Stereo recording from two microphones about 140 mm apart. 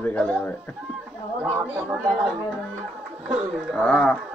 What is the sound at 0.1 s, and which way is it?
Speech, 10° left (ahead or behind).